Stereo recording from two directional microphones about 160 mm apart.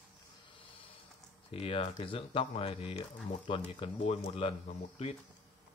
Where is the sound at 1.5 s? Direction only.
35° left (ahead or behind).